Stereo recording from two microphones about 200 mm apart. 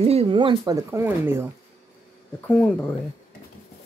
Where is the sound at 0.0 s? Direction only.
30° right (ahead or behind).